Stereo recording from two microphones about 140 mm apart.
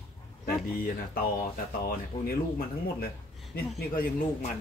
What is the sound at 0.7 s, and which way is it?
Speech, 90° left.